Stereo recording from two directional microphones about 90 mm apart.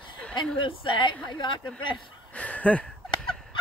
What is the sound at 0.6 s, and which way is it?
Speech, 65° left (ahead or behind).